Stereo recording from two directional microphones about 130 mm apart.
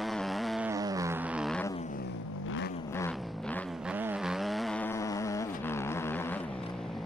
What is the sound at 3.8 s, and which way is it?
Vehicle, 10° right (ahead or behind).